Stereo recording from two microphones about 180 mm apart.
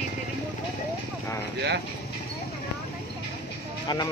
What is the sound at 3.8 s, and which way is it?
Speech, 25° left (ahead or behind).